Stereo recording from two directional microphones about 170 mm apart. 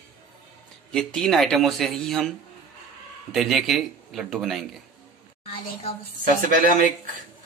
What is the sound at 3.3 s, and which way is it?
Speech, centre (ahead or behind).